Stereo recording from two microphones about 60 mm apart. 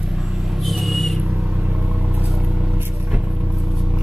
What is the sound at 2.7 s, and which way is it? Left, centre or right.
Vehicle, right.